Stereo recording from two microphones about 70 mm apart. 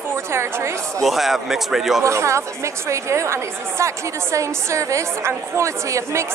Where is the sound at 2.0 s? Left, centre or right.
Right.